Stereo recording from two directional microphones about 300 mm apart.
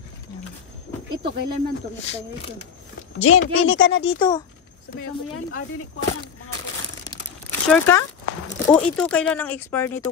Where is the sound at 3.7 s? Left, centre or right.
Centre.